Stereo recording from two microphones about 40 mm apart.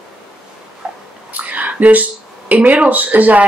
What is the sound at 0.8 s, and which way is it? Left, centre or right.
Bathtub, right.